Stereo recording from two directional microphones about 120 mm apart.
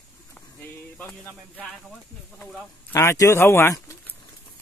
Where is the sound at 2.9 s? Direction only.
25° left (ahead or behind).